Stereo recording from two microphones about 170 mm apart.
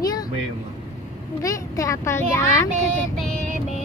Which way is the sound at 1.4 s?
20° left (ahead or behind).